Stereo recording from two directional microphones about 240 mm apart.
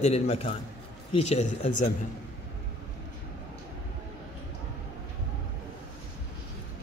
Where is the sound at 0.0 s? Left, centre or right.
Left.